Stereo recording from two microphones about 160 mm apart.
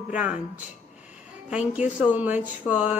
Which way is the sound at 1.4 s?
5° right (ahead or behind).